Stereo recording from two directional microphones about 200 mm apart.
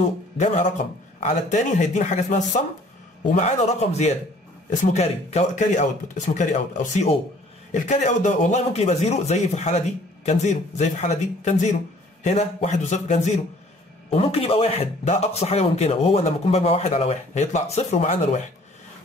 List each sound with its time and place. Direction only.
0.0 s speech: 35° left (ahead or behind)